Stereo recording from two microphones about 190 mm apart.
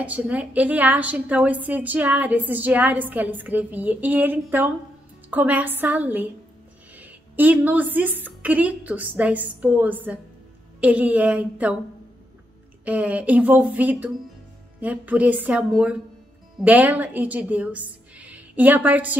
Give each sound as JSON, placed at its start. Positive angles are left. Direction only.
{"t": 0.0, "sound": "a woman's voice", "side_deg": -5}
{"t": 12.8, "sound": "a woman's voice", "side_deg": -10}